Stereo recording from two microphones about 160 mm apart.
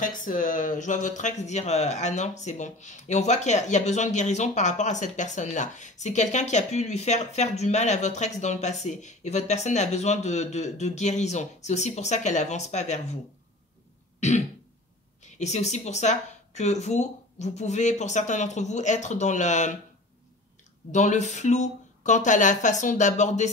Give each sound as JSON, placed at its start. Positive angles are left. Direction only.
{"t": 0.0, "sound": "speech", "side_deg": 55}
{"t": 15.3, "sound": "speech", "side_deg": 45}
{"t": 20.9, "sound": "speech", "side_deg": 45}